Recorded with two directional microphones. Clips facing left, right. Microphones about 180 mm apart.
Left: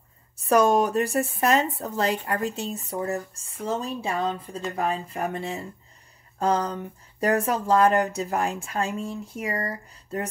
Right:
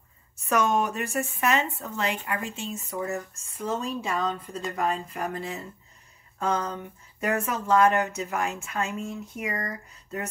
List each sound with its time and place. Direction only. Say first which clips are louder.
0.5 s a woman's voice: left 5 dB; 35° left (ahead or behind)